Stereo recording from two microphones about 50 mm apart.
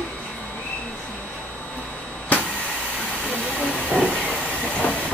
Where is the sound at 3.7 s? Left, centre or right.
Centre.